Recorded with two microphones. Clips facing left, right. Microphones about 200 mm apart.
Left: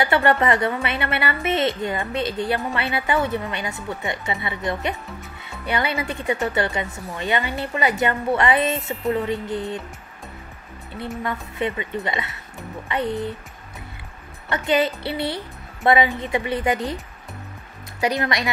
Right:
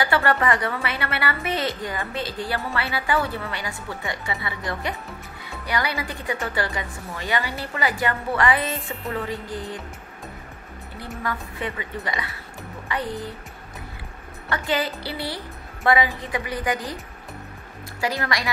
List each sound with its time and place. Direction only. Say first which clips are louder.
0.0 s a woman's voice: left 3 dB; 20° left (ahead or behind)
11.2 s a woman's voice: left 3 dB; 25° left (ahead or behind)
14.5 s a woman's voice: left 5 dB; 20° left (ahead or behind)
18.0 s a woman's voice: left 4 dB; 20° left (ahead or behind)